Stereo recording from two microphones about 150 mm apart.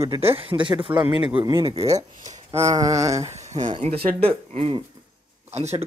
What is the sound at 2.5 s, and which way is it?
Speech, 20° right (ahead or behind).